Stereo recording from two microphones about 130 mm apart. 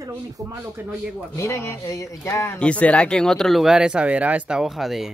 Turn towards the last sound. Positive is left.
turn(degrees=0)  # may be behind; listen again after turning